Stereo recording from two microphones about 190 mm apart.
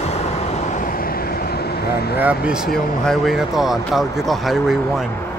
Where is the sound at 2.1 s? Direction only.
5° right (ahead or behind).